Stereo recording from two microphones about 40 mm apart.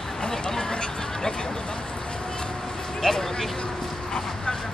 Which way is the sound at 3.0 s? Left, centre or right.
Centre.